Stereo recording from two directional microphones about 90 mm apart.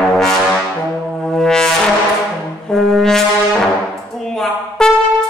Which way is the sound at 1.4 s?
5° left (ahead or behind).